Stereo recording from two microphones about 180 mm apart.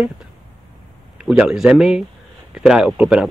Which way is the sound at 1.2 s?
5° right (ahead or behind).